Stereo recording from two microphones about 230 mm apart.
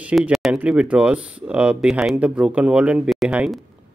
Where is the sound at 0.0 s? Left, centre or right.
Centre.